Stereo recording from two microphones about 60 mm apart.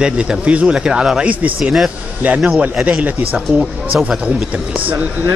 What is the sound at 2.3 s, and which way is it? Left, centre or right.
Speech, right.